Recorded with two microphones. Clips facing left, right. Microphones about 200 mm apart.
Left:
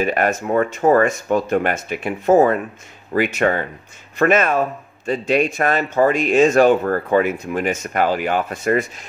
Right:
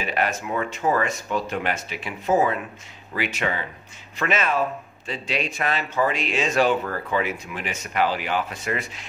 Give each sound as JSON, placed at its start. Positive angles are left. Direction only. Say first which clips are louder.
{"t": 0.0, "sound": "speech", "louder": "left 7 dB", "side_deg": 50}